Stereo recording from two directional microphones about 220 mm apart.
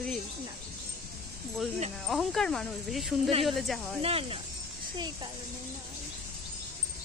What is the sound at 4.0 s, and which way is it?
Speech, 25° right (ahead or behind).